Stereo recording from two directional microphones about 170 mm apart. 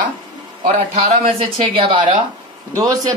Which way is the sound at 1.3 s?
30° right (ahead or behind).